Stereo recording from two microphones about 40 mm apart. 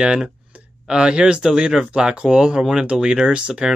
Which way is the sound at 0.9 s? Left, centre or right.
Right.